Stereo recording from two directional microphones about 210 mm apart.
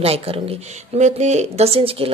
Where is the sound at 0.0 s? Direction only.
30° right (ahead or behind).